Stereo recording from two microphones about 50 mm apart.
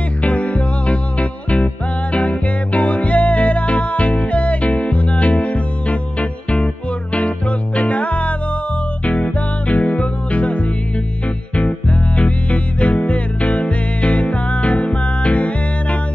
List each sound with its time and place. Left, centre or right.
0.2 s music: left
12.2 s music: left